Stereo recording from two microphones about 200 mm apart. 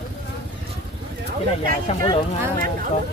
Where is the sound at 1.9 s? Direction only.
30° left (ahead or behind).